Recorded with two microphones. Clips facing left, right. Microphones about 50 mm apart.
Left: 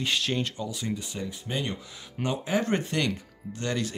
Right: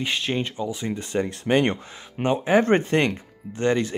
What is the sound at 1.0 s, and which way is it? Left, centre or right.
Speech, right.